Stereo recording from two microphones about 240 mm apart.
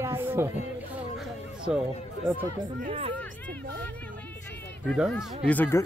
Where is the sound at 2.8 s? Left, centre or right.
Right.